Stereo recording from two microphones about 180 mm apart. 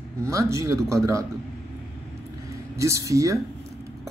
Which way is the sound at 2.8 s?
15° right (ahead or behind).